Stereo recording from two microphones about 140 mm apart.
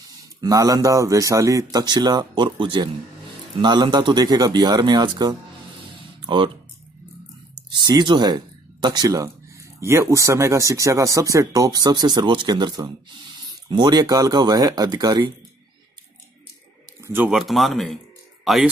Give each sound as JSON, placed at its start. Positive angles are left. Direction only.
{"t": 0.4, "sound": "speech", "side_deg": -25}
{"t": 7.7, "sound": "speech", "side_deg": -30}
{"t": 17.0, "sound": "speech", "side_deg": -15}
{"t": 17.4, "sound": "speech", "side_deg": 0}